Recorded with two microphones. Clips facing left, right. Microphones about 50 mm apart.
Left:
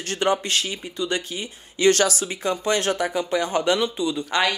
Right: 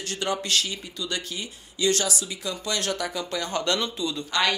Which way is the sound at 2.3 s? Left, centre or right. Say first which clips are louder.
Left 7 dB; left.